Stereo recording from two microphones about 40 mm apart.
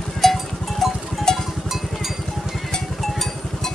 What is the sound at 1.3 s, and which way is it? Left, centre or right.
Cowbell, centre.